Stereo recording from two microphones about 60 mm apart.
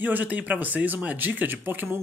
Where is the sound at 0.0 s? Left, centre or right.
Right.